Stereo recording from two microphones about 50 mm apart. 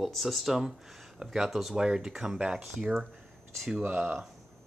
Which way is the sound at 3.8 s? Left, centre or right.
Right.